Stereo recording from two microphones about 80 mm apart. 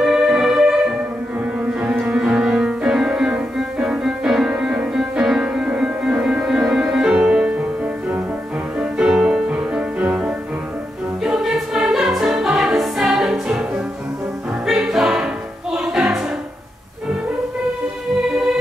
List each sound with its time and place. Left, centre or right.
0.0 s music: centre
8.7 s music: centre
14.7 s music: centre